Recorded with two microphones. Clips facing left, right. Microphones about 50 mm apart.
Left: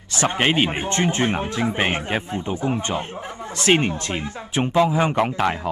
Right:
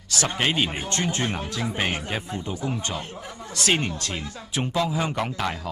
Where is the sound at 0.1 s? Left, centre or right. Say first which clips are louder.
Left 5 dB; left.